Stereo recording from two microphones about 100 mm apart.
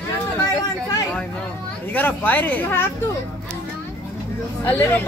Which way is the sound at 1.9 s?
20° left (ahead or behind).